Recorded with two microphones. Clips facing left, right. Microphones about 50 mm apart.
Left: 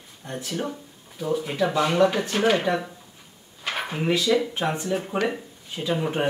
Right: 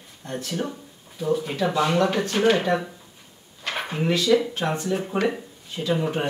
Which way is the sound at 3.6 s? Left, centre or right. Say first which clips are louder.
Right 1 dB; centre.